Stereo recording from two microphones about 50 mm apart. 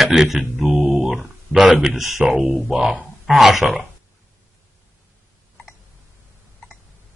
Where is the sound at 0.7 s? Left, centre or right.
Right.